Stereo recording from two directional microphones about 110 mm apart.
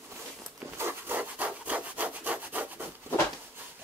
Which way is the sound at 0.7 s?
20° right (ahead or behind).